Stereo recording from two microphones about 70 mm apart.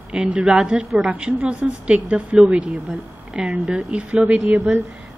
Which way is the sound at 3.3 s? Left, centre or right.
Centre.